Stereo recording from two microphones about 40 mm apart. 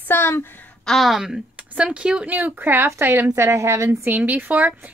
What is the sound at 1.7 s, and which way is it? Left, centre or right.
Speech, right.